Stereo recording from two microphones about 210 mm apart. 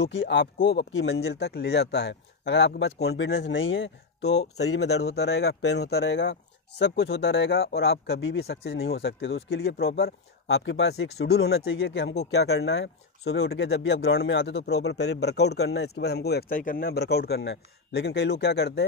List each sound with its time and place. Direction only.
0.0 s speech: 60° left (ahead or behind)
4.2 s speech: 30° left (ahead or behind)
4.7 s speech: 50° left (ahead or behind)
11.6 s speech: 65° left (ahead or behind)
12.3 s speech: 80° left
12.5 s speech: 65° left (ahead or behind); by 15.0 s 85° left
15.1 s speech: 50° left (ahead or behind)